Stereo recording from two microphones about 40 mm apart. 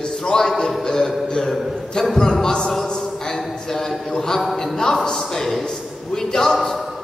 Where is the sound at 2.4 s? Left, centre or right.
Left.